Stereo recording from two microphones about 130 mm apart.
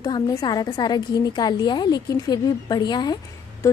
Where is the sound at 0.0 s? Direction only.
30° left (ahead or behind).